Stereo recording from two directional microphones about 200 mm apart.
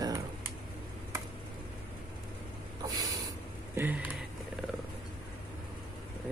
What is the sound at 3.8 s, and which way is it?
Speech, 10° right (ahead or behind).